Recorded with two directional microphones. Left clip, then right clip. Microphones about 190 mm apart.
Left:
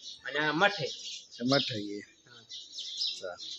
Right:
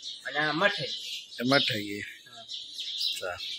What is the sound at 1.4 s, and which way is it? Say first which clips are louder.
Speech: right 4 dB; 5° right (ahead or behind).